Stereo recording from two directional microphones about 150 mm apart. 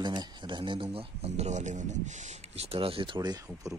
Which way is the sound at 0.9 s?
45° right (ahead or behind).